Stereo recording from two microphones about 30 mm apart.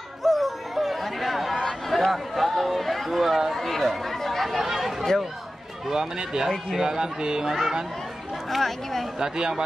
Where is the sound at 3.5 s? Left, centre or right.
Centre.